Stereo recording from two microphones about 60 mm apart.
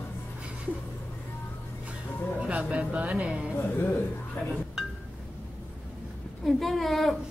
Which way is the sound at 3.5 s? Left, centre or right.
Left.